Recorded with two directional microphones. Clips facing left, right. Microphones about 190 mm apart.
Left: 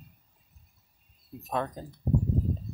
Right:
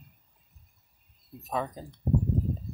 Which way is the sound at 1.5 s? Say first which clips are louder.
Left 1 dB; 5° right (ahead or behind).